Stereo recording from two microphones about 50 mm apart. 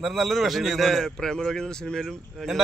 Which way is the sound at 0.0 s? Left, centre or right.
Centre.